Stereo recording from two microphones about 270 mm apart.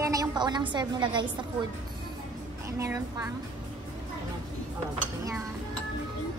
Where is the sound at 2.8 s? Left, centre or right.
Centre.